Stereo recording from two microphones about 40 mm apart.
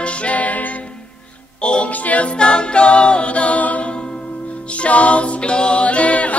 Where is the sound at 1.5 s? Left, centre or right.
Left.